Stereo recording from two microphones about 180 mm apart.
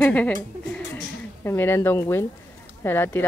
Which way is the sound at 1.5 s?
15° left (ahead or behind).